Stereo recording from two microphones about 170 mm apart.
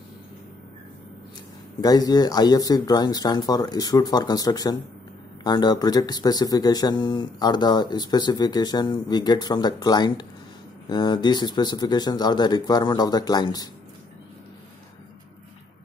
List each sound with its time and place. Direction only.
1.8 s speech: 20° left (ahead or behind)